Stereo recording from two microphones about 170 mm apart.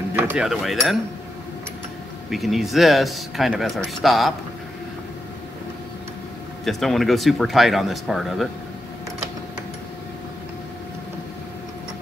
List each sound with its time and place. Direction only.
0.1 s speech: 10° right (ahead or behind)
2.3 s speech: centre (ahead or behind)
6.6 s speech: centre (ahead or behind)